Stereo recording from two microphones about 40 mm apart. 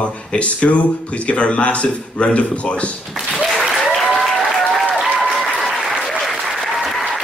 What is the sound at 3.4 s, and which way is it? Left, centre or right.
Applause, centre.